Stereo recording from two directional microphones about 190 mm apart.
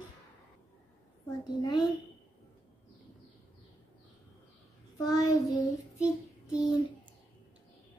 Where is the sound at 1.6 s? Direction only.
20° left (ahead or behind).